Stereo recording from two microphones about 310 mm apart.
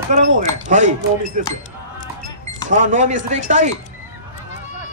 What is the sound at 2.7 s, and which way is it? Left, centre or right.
Speech, right.